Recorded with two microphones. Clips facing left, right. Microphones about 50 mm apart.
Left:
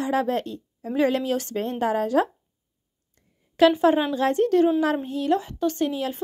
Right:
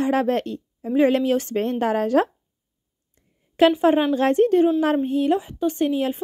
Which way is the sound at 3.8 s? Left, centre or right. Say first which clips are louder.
Right 2 dB; right.